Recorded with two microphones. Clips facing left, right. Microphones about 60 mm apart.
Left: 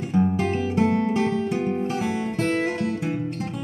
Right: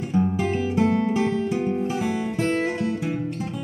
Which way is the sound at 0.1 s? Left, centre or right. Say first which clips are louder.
Left 1 dB; centre.